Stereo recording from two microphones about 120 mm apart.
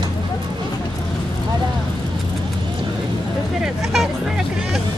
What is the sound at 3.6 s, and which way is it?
Vehicle, centre (ahead or behind).